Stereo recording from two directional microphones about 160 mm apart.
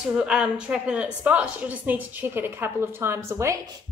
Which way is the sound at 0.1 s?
5° right (ahead or behind).